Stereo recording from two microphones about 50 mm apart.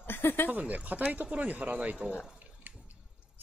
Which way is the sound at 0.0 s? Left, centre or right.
Left.